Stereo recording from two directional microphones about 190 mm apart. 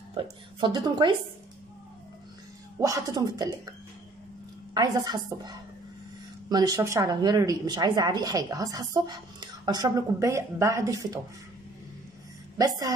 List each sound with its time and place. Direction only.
0.1 s a woman's voice: 25° right (ahead or behind)
2.8 s a woman's voice: 20° right (ahead or behind)
4.7 s a woman's voice: 20° right (ahead or behind)
12.5 s a woman's voice: 20° right (ahead or behind)